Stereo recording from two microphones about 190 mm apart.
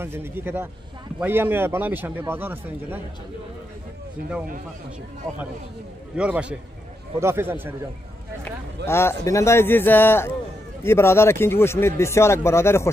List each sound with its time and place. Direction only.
0.0 s a man's voice: 10° right (ahead or behind)
4.2 s speech: 50° right (ahead or behind)
6.1 s a man's voice: 5° right (ahead or behind)
8.8 s speech: 15° left (ahead or behind)